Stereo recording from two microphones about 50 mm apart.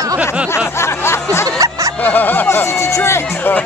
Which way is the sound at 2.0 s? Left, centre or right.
Left.